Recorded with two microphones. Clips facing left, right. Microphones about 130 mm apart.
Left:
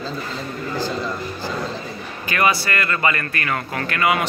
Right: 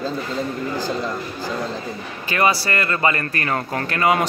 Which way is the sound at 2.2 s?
30° right (ahead or behind).